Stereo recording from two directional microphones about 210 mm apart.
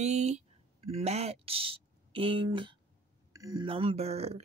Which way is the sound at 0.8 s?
30° right (ahead or behind).